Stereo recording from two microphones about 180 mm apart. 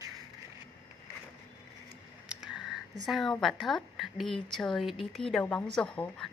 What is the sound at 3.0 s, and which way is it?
A woman's voice, centre (ahead or behind).